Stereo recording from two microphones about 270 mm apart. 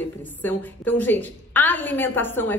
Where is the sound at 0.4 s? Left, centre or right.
Centre.